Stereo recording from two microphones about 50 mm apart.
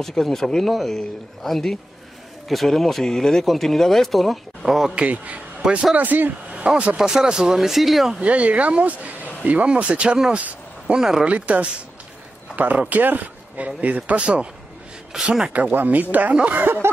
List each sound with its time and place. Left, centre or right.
0.0 s speech: centre
4.6 s speech: centre
4.9 s speech: right
5.9 s speech: right
7.0 s speech: centre
8.2 s speech: right
10.3 s a sound: right
11.0 s speech: centre
11.2 s speech: right
15.1 s speech: centre
15.7 s speech: right
16.5 s speech: right